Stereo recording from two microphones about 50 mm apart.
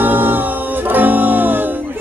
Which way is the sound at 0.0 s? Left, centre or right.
Right.